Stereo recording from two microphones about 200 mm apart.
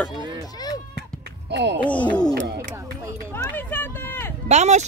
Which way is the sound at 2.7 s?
15° right (ahead or behind).